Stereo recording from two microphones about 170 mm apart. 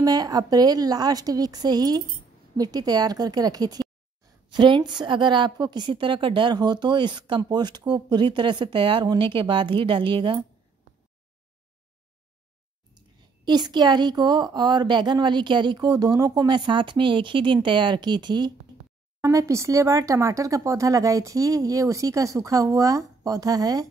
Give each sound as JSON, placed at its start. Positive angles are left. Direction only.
{"t": 0.0, "sound": "a woman's voice", "side_deg": -20}
{"t": 13.5, "sound": "a woman's voice", "side_deg": -25}